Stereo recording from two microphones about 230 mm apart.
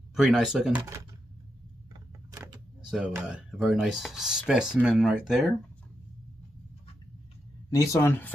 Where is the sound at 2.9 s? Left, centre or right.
Centre.